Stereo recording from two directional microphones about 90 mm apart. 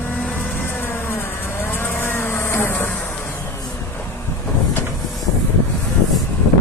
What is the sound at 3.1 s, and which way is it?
Music, 30° left (ahead or behind).